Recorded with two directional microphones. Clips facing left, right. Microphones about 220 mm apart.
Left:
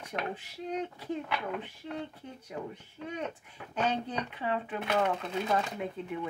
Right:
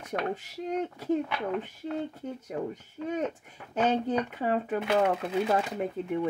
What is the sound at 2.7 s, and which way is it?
Speech, 40° right (ahead or behind).